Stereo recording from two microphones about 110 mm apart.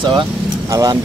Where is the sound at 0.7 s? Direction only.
35° right (ahead or behind).